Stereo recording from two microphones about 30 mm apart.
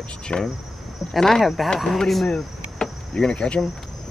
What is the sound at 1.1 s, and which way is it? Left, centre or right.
Speech, centre.